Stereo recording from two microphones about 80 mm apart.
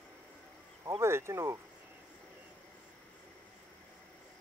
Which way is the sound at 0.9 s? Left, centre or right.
Right.